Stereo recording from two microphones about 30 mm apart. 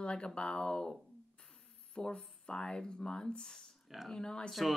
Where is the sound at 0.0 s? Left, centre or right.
Left.